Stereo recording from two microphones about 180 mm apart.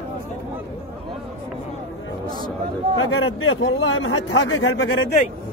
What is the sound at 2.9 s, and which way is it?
Speech, 90° left.